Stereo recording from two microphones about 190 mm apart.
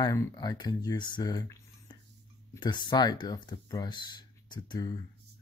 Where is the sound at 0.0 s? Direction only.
20° left (ahead or behind).